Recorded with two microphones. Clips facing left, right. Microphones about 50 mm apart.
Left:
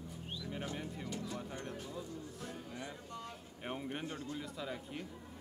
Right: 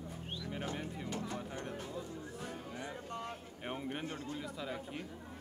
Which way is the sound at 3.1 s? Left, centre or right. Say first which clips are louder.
Right 4 dB; right.